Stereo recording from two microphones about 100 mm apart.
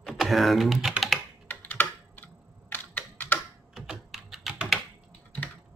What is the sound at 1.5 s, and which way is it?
Computer keyboard, 15° left (ahead or behind).